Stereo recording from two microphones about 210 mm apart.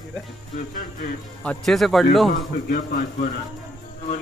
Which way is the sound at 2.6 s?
40° left (ahead or behind).